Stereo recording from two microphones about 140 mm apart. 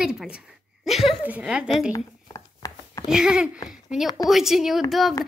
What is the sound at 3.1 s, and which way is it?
Speech, 5° right (ahead or behind).